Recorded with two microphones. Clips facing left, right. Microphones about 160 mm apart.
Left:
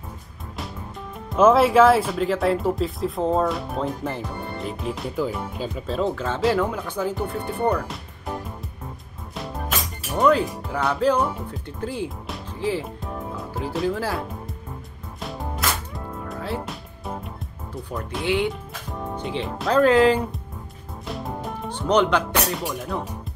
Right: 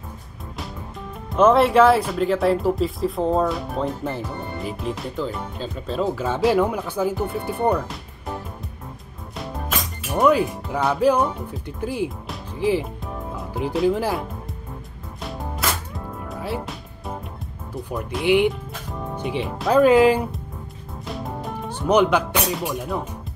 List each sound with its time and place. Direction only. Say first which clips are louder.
1.3 s speech: even; centre (ahead or behind)
6.2 s speech: right 5 dB; 15° right (ahead or behind)
10.1 s speech: right 1 dB; 10° right (ahead or behind)
13.5 s music: right 6 dB; 15° right (ahead or behind)
13.8 s speech: right 5 dB; 15° right (ahead or behind)
15.1 s music: even; centre (ahead or behind)
16.3 s music: right 1 dB; 10° right (ahead or behind)
16.6 s music: even; centre (ahead or behind)
17.8 s speech: right 3 dB; 5° right (ahead or behind)
18.2 s speech: right 6 dB; 15° right (ahead or behind)
21.0 s music: even; centre (ahead or behind)
22.5 s speech: right 2 dB; 5° right (ahead or behind)